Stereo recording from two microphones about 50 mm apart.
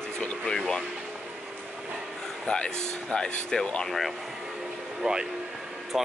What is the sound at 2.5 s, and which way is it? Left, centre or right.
Speech, centre.